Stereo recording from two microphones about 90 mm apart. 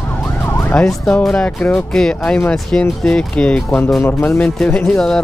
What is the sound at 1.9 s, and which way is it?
Speech, 5° left (ahead or behind).